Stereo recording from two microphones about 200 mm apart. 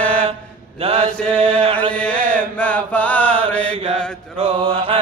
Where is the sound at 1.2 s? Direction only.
5° left (ahead or behind).